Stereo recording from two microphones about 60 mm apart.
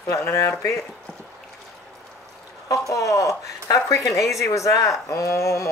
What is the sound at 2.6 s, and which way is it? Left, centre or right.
Speech, left.